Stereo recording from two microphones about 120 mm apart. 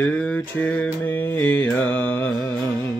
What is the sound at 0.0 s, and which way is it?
Mantra, 10° left (ahead or behind).